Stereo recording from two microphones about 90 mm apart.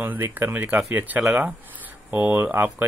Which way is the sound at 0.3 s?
20° right (ahead or behind).